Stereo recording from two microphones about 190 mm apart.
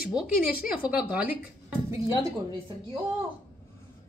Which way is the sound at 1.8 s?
15° right (ahead or behind).